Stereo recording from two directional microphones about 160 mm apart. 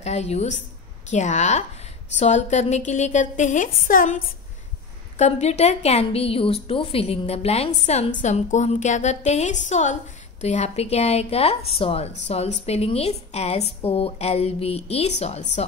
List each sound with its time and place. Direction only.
0.0 s a woman's voice: 45° left (ahead or behind)
5.1 s a woman's voice: 45° left (ahead or behind)